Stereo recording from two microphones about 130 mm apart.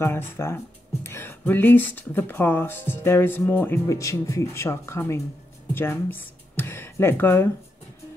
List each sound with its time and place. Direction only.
0.0 s speech: 20° left (ahead or behind)